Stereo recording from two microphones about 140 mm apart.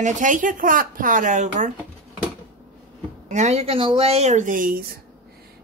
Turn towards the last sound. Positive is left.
turn(degrees=-85)